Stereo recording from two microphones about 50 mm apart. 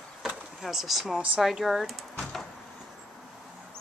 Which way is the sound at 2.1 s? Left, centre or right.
Centre.